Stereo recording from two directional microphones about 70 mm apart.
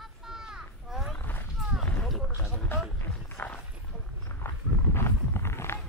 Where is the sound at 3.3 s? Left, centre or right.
Left.